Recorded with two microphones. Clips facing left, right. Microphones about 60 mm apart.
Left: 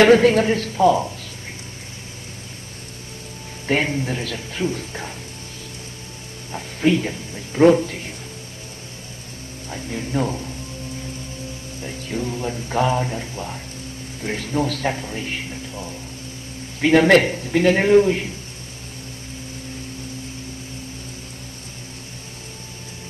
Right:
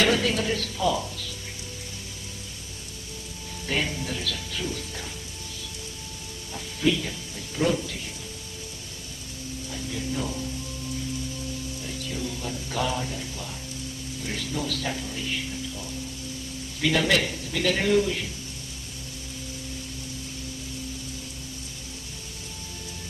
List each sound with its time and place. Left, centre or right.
0.0 s a man's voice: left
3.6 s a man's voice: left
6.5 s a man's voice: left
9.7 s a man's voice: left
11.8 s a man's voice: left